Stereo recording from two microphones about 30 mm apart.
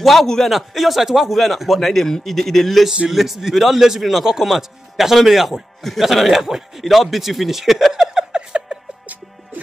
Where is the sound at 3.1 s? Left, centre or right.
Centre.